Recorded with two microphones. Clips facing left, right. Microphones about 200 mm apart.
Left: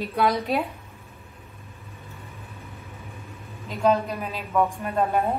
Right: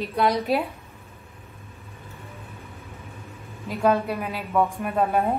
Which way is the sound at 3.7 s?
10° right (ahead or behind).